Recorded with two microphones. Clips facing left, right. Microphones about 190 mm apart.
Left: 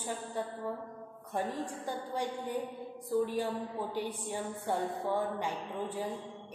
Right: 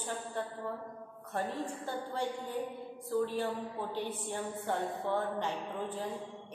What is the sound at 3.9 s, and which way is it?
A woman's voice, 10° left (ahead or behind).